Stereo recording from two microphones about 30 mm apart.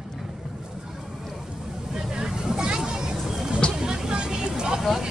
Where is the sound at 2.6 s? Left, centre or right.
Right.